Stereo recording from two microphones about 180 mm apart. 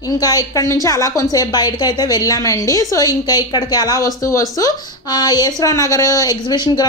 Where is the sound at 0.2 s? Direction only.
20° left (ahead or behind).